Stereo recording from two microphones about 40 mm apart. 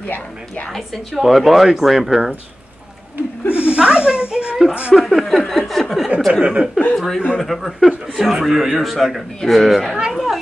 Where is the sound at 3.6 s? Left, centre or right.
Right.